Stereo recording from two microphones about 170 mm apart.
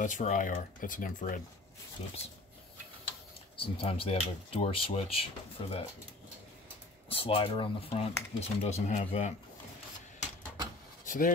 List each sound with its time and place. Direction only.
0.0 s speech: 45° left (ahead or behind)
2.0 s speech: 35° left (ahead or behind)
3.5 s speech: 30° left (ahead or behind)
7.1 s speech: 35° left (ahead or behind)
11.1 s speech: 55° left (ahead or behind)